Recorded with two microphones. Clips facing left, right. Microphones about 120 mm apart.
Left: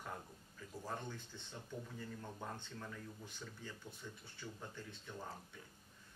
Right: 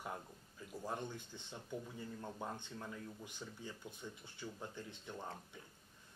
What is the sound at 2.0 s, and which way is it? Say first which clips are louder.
Speech: right 2 dB; 20° right (ahead or behind).